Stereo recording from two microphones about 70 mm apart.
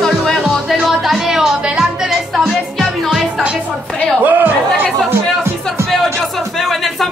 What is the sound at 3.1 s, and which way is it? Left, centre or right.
Speech, centre.